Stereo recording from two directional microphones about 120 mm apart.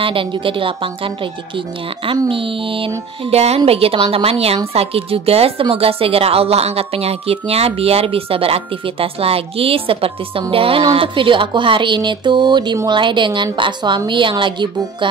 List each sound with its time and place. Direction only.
0.0 s speech: 45° right (ahead or behind)
3.3 s a woman's voice: 60° right (ahead or behind); by 15.0 s 40° right (ahead or behind)